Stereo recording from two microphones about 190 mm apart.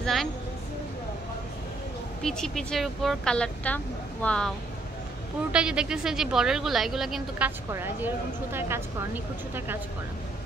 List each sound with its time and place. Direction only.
0.0 s a sound: centre (ahead or behind)
2.2 s a woman's voice: 5° left (ahead or behind)
5.5 s a woman's voice: 5° right (ahead or behind)